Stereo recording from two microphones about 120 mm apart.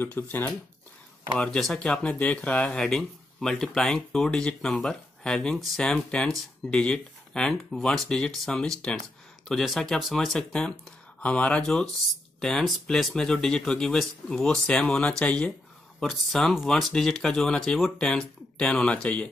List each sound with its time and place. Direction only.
0.0 s speech: 15° left (ahead or behind)
1.4 s speech: 5° left (ahead or behind)